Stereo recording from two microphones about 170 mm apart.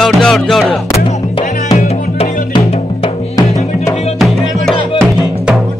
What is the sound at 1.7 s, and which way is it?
Music, 40° left (ahead or behind).